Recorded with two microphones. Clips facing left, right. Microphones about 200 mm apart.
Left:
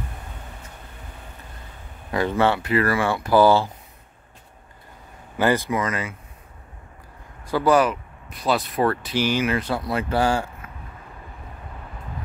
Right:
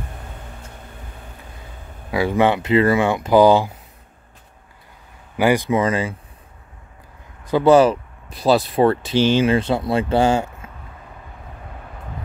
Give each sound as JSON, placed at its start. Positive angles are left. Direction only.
{"t": 2.0, "sound": "speech", "side_deg": -10}
{"t": 5.4, "sound": "speech", "side_deg": -15}
{"t": 5.8, "sound": "speech", "side_deg": -30}
{"t": 7.4, "sound": "speech", "side_deg": -20}